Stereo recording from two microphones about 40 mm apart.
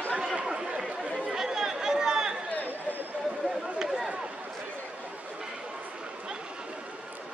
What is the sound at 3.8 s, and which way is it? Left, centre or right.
Run, centre.